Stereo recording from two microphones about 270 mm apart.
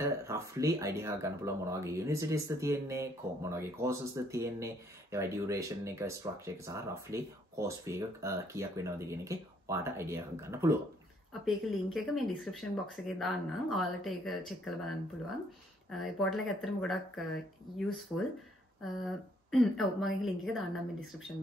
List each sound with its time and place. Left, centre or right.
0.0 s speech: centre